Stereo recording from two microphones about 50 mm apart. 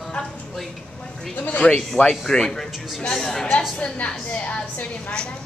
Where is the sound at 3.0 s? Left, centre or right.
Centre.